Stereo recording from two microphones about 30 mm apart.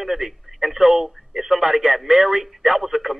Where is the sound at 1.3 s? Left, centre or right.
Centre.